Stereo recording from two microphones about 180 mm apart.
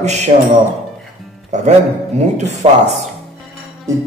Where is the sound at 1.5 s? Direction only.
40° right (ahead or behind).